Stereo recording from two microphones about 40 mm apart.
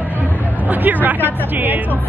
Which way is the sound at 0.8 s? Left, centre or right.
Right.